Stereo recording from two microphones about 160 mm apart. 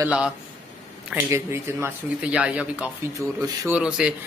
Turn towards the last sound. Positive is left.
turn(degrees=-5)  # may be behind; listen again after turning